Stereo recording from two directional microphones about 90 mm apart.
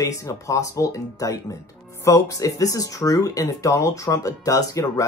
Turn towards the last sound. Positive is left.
turn(degrees=35)  # may be behind; listen again after turning